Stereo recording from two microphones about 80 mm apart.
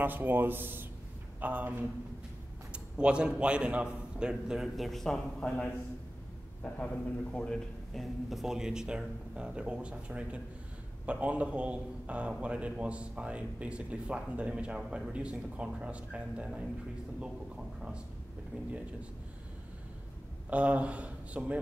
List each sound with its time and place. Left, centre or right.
0.0 s a man's voice: right; by 5.7 s centre
7.3 s a man's voice: centre
20.4 s a man's voice: centre